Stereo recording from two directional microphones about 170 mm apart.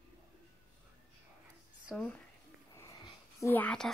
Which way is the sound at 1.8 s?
5° left (ahead or behind).